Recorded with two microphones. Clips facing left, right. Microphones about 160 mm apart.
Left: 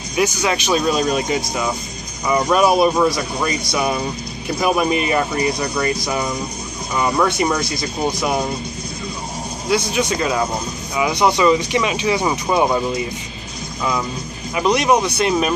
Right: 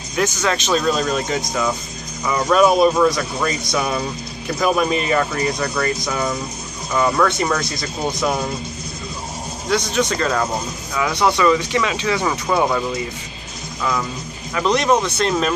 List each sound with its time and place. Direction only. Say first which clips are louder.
0.1 s speech: left 1 dB; 15° left (ahead or behind)
9.7 s speech: even; 10° left (ahead or behind)
14.5 s speech: left 1 dB; 15° left (ahead or behind)